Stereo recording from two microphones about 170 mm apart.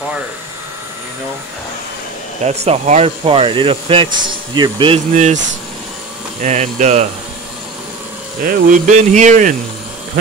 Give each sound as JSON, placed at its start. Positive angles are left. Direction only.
{"t": 2.4, "sound": "speech", "side_deg": -40}
{"t": 5.1, "sound": "speech", "side_deg": -45}
{"t": 6.4, "sound": "speech", "side_deg": -45}
{"t": 8.5, "sound": "speech", "side_deg": -50}